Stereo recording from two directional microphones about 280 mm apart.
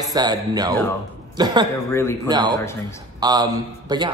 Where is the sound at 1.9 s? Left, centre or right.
Centre.